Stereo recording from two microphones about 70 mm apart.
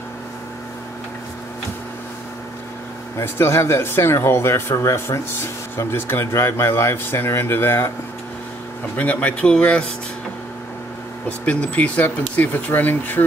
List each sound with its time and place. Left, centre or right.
3.2 s speech: left
8.9 s speech: left
11.2 s speech: centre